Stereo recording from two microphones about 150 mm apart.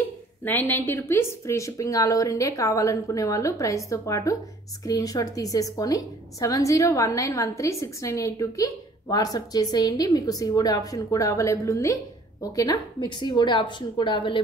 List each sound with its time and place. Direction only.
0.4 s a woman's voice: 15° left (ahead or behind); by 14.4 s 35° left (ahead or behind)